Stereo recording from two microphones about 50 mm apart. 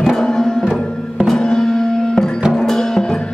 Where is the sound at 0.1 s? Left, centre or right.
Centre.